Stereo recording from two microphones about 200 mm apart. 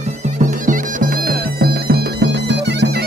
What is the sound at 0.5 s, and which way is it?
Bagpipes, 40° right (ahead or behind).